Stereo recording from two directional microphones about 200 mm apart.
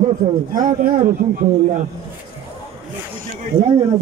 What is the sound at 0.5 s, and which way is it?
A man's voice, 40° right (ahead or behind).